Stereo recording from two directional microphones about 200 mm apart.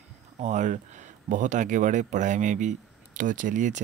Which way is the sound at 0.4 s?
35° right (ahead or behind).